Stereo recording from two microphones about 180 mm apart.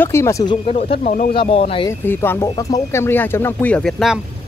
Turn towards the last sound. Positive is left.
turn(degrees=0)  # may be behind; listen again after turning